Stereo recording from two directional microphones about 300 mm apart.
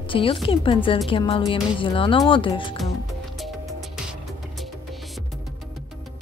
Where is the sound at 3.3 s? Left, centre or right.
Centre.